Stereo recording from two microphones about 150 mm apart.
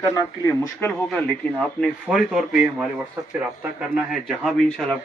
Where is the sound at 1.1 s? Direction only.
5° left (ahead or behind).